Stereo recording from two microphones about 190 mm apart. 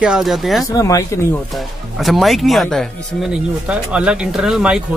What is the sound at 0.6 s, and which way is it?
Speech, 15° left (ahead or behind).